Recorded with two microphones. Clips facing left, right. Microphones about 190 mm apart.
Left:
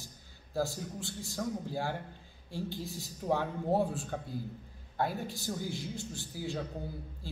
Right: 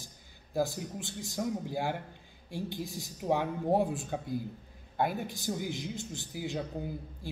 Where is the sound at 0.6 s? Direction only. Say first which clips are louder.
Right 2 dB; 15° right (ahead or behind).